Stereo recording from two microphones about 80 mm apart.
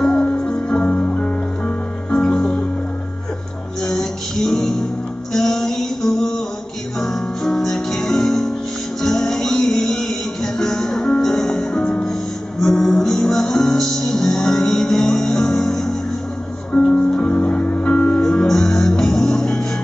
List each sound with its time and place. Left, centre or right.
0.0 s music: centre
3.8 s music: centre